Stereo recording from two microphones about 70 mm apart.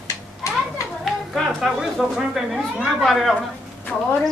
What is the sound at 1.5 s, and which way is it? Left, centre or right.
Speech, centre.